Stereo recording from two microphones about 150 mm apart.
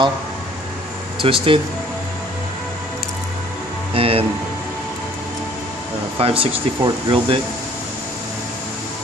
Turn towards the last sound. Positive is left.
turn(degrees=-35)  # may be behind; listen again after turning